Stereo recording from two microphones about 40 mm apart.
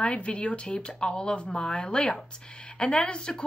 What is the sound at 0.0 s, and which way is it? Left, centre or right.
A woman's voice, left.